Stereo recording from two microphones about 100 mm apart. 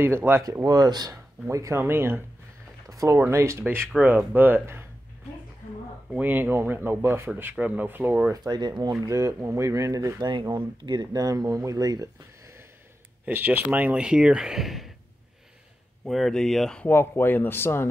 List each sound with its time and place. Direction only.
0.0 s speech: 20° right (ahead or behind)
0.4 s speech: 40° right (ahead or behind)
1.5 s speech: 30° right (ahead or behind)
2.9 s speech: 35° right (ahead or behind)
4.0 s speech: 20° right (ahead or behind)
6.1 s speech: 20° right (ahead or behind)
8.3 s speech: 45° right (ahead or behind)
9.0 s speech: 35° right (ahead or behind)
10.5 s speech: 45° right (ahead or behind)
13.2 s speech: 20° right (ahead or behind); by 14.9 s centre (ahead or behind)
16.1 s speech: 5° left (ahead or behind)
16.8 s speech: 25° left (ahead or behind)